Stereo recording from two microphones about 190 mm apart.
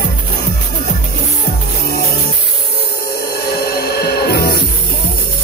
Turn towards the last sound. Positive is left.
turn(degrees=55)  # may be behind; listen again after turning